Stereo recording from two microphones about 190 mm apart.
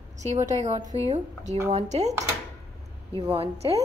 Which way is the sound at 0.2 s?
40° right (ahead or behind).